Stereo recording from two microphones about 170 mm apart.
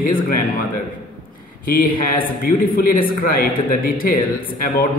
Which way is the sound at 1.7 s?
55° left (ahead or behind).